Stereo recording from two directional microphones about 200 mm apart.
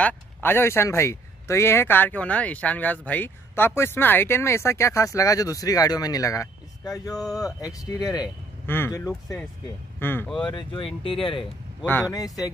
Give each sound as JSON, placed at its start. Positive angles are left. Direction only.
{"t": 0.0, "sound": "speech", "side_deg": 10}
{"t": 10.5, "sound": "speech", "side_deg": 25}
{"t": 11.8, "sound": "speech", "side_deg": 10}